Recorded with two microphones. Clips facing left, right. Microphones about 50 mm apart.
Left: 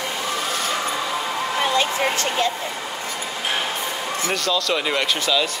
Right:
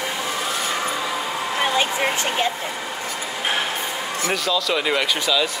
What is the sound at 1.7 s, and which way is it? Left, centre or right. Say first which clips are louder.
Speech: even; centre.